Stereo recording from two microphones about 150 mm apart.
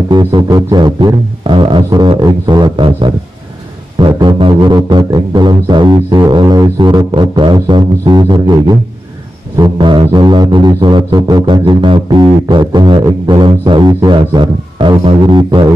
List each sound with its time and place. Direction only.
0.1 s music: 30° right (ahead or behind)
4.1 s music: 30° right (ahead or behind)
9.6 s a sound: 30° right (ahead or behind)